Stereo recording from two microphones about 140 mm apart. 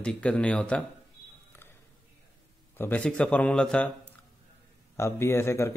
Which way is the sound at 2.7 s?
10° left (ahead or behind).